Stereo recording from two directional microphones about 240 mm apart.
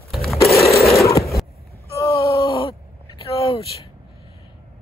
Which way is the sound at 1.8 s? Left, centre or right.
Centre.